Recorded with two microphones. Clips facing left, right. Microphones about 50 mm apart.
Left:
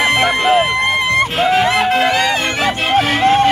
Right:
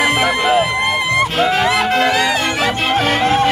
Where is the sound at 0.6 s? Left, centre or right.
Left.